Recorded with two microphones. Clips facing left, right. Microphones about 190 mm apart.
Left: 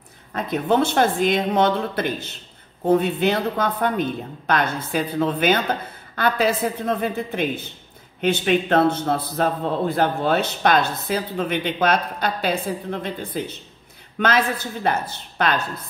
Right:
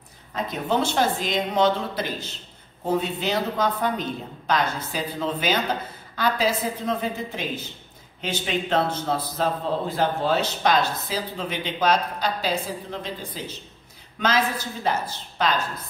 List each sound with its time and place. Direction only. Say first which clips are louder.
0.3 s a man's voice: left 4 dB; 55° left (ahead or behind)